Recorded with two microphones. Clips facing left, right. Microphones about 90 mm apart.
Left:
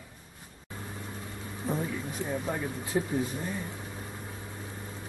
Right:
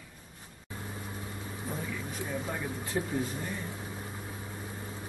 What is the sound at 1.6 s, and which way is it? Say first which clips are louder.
Speech: left 6 dB; 20° left (ahead or behind).